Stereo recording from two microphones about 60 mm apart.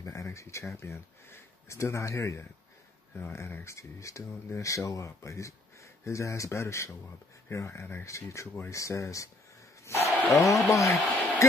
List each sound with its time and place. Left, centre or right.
0.0 s speech: left
8.1 s speech: left
9.9 s speech: left
10.3 s speech: left
11.1 s a sound: left